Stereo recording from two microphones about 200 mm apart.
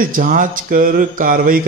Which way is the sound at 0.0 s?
45° right (ahead or behind).